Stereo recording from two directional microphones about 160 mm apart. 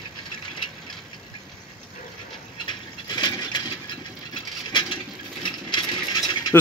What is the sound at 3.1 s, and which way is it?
Coin, 25° left (ahead or behind).